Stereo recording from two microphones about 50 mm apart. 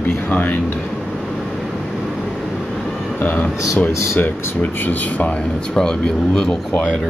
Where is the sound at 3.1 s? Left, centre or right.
Left.